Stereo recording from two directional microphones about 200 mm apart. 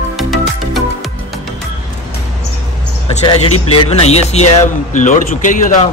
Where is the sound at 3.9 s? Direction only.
30° left (ahead or behind).